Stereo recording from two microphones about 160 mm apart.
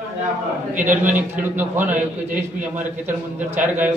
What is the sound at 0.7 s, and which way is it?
A man's voice, 10° right (ahead or behind).